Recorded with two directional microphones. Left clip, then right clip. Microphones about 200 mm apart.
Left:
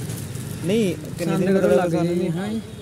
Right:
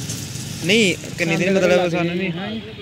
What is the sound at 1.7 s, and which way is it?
Speech, 5° left (ahead or behind).